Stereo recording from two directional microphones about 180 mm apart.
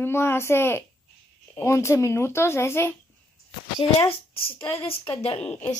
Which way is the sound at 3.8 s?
30° left (ahead or behind).